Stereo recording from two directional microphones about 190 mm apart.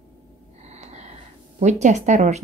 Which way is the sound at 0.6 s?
35° right (ahead or behind).